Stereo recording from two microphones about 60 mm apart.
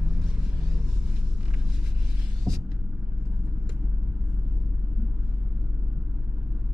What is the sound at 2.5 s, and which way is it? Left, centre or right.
Car, right.